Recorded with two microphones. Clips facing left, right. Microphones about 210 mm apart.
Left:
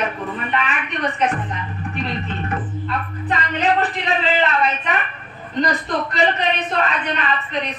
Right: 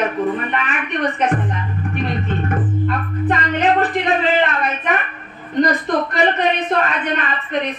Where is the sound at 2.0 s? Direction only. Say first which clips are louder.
Right 4 dB; 50° right (ahead or behind).